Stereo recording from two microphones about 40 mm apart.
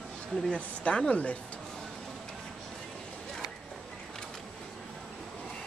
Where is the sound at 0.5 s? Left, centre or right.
Left.